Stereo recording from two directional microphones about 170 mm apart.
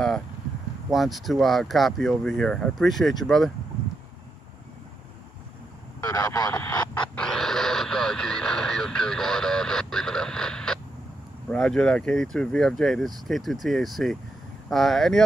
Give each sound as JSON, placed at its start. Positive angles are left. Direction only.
{"t": 0.8, "sound": "speech", "side_deg": 0}
{"t": 6.0, "sound": "speech", "side_deg": 25}
{"t": 7.2, "sound": "radio", "side_deg": 5}
{"t": 11.5, "sound": "speech", "side_deg": 5}